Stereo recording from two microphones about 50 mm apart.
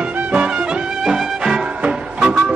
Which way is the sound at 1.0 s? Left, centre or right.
Centre.